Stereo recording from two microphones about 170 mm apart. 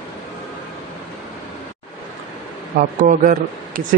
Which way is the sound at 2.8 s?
50° right (ahead or behind).